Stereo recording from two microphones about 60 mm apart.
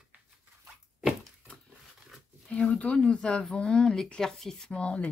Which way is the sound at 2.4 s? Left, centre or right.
Left.